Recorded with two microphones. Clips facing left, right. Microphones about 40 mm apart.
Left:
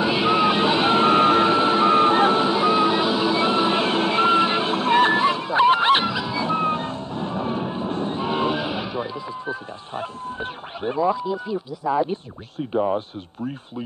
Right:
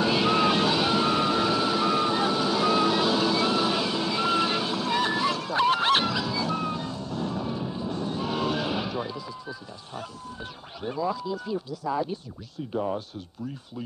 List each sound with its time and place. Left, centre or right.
0.0 s vehicle: centre; by 2.5 s left
2.5 s music: left
9.5 s duck: left
12.7 s speech: left